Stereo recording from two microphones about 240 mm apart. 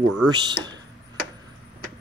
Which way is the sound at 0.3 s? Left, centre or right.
Centre.